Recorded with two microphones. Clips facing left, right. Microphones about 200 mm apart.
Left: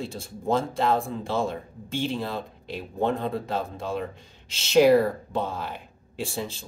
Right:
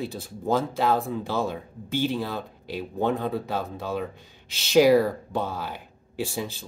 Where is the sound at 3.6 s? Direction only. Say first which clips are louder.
Even; 25° left (ahead or behind).